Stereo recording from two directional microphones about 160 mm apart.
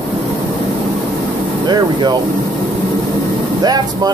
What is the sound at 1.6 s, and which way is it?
Air conditioning, 25° right (ahead or behind).